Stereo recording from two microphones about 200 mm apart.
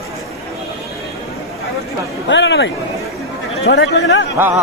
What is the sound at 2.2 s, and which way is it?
Speech, 65° left (ahead or behind).